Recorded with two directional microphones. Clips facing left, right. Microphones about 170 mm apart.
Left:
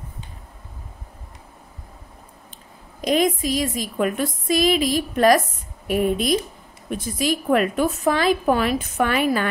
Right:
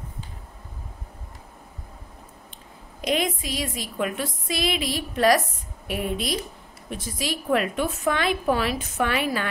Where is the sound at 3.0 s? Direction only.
40° left (ahead or behind).